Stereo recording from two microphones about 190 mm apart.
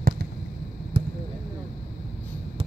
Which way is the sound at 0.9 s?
30° right (ahead or behind).